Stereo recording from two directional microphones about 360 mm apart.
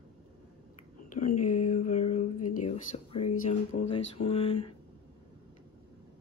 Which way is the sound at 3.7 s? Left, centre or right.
Left.